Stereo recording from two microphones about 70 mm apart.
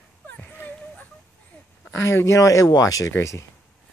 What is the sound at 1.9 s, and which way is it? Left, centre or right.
Speech, left.